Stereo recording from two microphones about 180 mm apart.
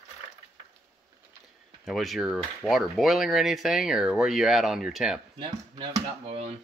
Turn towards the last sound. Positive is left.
turn(degrees=-35)  # may be behind; listen again after turning